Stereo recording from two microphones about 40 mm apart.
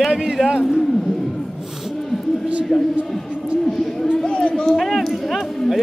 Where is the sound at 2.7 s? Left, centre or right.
Centre.